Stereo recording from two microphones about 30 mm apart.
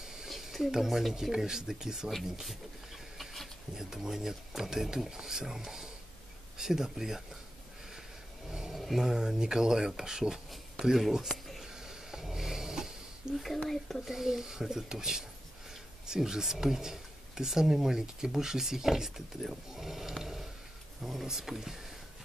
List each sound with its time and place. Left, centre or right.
0.0 s a sound: centre
0.8 s speech: centre
1.3 s speech: right
3.7 s speech: centre
8.5 s a sound: centre
8.7 s a sound: centre
9.0 s speech: centre
10.5 s speech: centre
11.2 s a sound: centre
11.6 s snoring: centre
13.3 s speech: centre
14.0 s speech: centre